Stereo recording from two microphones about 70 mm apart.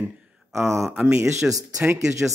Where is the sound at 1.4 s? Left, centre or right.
Centre.